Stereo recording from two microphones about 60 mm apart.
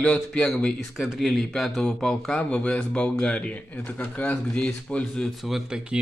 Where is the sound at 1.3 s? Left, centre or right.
Centre.